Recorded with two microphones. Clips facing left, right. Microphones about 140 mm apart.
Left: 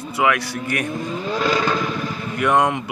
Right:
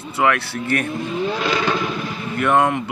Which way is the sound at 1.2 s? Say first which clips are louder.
Left 1 dB; 40° left (ahead or behind).